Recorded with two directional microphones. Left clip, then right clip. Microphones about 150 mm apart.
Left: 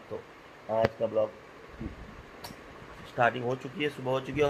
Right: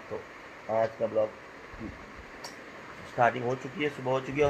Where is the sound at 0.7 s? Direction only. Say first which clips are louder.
Even; 5° right (ahead or behind).